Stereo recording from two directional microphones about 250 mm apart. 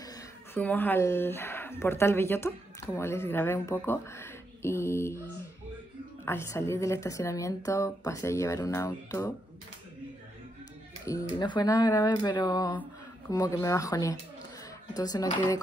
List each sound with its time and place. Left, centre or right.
0.0 s speech: centre
6.2 s a woman's voice: centre
11.1 s a woman's voice: centre